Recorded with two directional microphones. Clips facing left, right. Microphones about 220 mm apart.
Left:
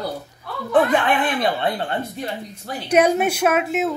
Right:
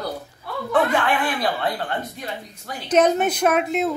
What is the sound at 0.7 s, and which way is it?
Speech, 20° left (ahead or behind).